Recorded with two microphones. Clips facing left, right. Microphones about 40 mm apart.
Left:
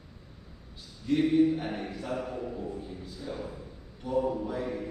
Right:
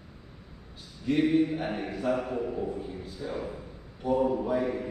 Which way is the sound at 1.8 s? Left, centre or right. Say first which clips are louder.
Right 3 dB; right.